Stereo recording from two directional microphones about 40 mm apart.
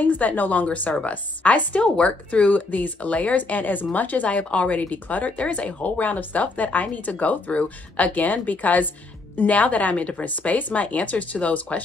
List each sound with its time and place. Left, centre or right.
0.0 s speech: left